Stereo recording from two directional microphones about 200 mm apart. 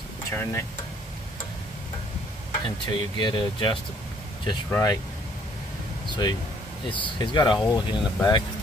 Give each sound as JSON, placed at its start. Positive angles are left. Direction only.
{"t": 0.3, "sound": "speech", "side_deg": 10}
{"t": 2.6, "sound": "speech", "side_deg": 20}
{"t": 4.6, "sound": "speech", "side_deg": 10}
{"t": 6.0, "sound": "a sound", "side_deg": 20}
{"t": 7.2, "sound": "speech", "side_deg": 20}